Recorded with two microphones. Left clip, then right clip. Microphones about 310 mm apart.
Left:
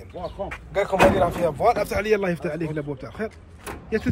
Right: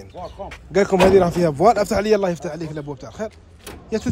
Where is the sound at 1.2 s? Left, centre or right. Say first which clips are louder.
Right 4 dB; right; by 3.2 s centre.